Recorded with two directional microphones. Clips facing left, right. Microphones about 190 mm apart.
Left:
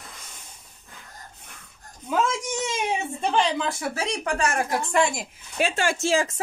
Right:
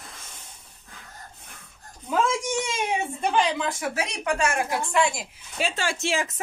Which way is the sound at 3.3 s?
30° left (ahead or behind).